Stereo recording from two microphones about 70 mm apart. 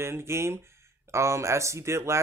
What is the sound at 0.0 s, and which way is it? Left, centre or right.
Speech, right.